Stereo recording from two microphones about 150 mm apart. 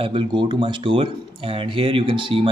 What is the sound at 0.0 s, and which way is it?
Speech, 35° right (ahead or behind).